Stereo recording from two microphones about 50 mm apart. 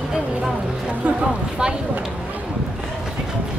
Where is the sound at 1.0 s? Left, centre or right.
Right.